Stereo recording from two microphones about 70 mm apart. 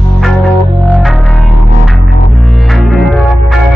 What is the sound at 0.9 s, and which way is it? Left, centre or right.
Music, centre.